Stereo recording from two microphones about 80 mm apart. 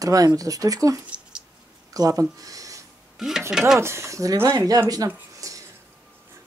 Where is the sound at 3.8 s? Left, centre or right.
Right.